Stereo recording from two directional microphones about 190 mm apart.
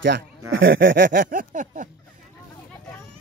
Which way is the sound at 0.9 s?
45° right (ahead or behind).